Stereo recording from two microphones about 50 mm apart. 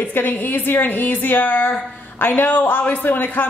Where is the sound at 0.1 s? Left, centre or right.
Left.